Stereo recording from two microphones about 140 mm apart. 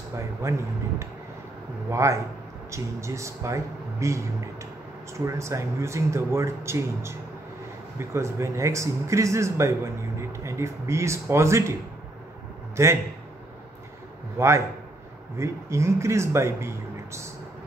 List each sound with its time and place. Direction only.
0.1 s speech: 20° right (ahead or behind)
5.2 s speech: 20° right (ahead or behind)
12.7 s a man's voice: 20° right (ahead or behind)
14.4 s speech: 20° right (ahead or behind)